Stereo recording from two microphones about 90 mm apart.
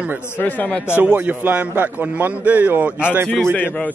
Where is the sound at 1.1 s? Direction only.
20° right (ahead or behind).